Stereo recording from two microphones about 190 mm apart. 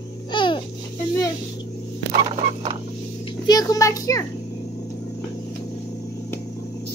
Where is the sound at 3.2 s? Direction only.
20° left (ahead or behind).